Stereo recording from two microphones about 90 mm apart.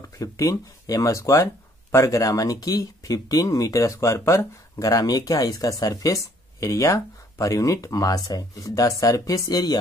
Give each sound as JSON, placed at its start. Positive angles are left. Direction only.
{"t": 0.2, "sound": "speech", "side_deg": 40}